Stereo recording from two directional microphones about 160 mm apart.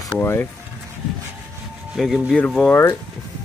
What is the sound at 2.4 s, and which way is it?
Speech, 10° left (ahead or behind).